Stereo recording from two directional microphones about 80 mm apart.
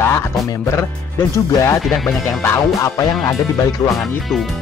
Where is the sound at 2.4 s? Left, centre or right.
Left.